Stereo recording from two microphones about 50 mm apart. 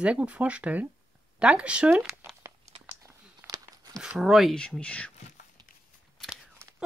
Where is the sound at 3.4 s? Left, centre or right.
Right.